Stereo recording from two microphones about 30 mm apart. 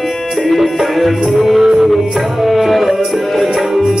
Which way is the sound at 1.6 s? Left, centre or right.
Right.